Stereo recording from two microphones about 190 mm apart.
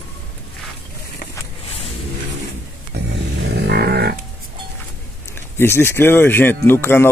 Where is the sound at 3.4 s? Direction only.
60° right (ahead or behind).